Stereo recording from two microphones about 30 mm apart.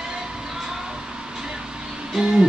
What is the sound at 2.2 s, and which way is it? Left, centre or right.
Music, centre.